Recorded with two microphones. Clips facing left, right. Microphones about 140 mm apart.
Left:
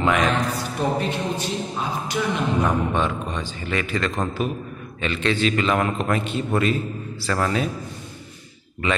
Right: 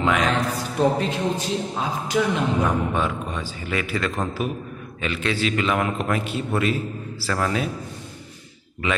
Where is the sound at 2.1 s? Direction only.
80° right.